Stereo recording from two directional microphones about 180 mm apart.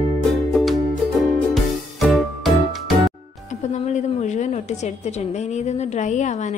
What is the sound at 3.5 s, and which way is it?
A woman's voice, 40° left (ahead or behind).